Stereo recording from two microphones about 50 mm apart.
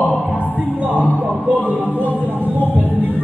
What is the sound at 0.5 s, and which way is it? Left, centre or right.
Music, right.